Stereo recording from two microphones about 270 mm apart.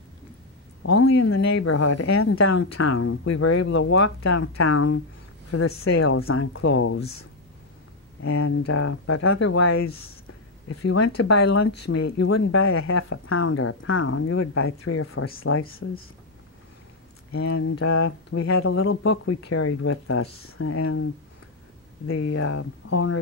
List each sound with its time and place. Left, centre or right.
1.0 s speech: left
2.3 s speech: left
8.2 s speech: left
11.1 s speech: left
11.6 s speech: left
11.9 s speech: left
17.3 s speech: left
19.0 s speech: left
22.0 s speech: left